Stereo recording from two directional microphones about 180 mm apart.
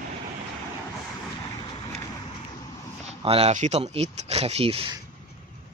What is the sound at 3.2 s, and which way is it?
Speech, 35° right (ahead or behind).